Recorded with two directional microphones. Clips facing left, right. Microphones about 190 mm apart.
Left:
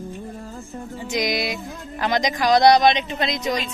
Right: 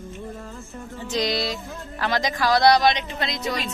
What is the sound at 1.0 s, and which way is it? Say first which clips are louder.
Speech: left 1 dB; 15° left (ahead or behind).